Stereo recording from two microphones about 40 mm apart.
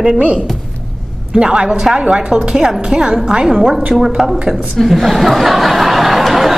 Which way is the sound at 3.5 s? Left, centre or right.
Centre.